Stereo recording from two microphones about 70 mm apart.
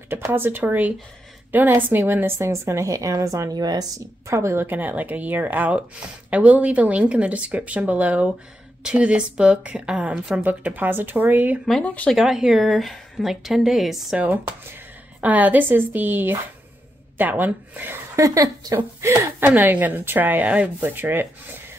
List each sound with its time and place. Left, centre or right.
0.1 s speech: right
2.3 s a woman's voice: right
3.5 s speech: right
4.3 s a woman's voice: right; by 10.1 s centre
10.4 s speech: right
11.8 s speech: left
12.2 s a woman's voice: centre
14.1 s speech: right
18.1 s a woman's voice: right
19.4 s speech: right